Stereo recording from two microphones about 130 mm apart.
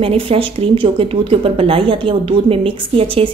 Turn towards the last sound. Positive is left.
turn(degrees=-45)  # may be behind; listen again after turning